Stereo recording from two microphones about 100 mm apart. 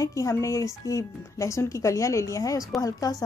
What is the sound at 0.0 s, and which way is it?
A woman's voice, 35° left (ahead or behind).